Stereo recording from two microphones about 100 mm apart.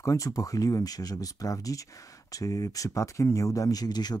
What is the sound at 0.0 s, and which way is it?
Speech, 35° left (ahead or behind).